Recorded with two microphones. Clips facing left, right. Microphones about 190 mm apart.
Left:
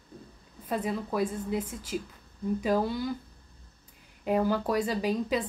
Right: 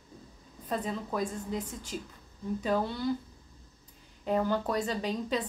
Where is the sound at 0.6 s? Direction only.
10° left (ahead or behind).